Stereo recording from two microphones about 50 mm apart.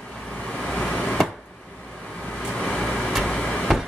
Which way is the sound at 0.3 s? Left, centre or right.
Centre.